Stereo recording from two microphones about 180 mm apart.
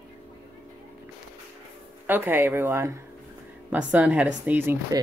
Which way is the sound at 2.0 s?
10° right (ahead or behind).